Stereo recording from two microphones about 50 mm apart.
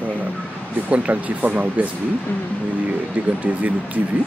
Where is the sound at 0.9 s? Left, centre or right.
Right.